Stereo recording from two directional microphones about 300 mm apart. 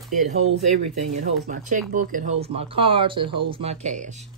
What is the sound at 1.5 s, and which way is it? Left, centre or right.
Speech, right.